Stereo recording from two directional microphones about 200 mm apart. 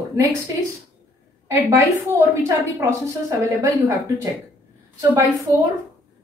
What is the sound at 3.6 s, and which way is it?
Speech, 15° right (ahead or behind).